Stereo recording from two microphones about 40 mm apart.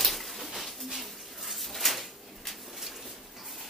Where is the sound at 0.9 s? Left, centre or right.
Centre.